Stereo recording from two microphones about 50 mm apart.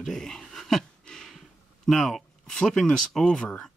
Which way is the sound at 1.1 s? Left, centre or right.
Centre.